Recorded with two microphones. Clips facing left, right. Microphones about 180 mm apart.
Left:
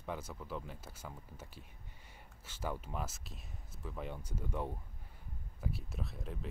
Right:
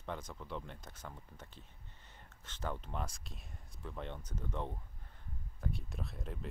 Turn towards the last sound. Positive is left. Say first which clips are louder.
# left 1 dB
turn(degrees=0)  # may be behind; listen again after turning